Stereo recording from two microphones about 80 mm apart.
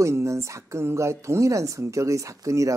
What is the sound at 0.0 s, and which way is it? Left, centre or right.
Speech, right.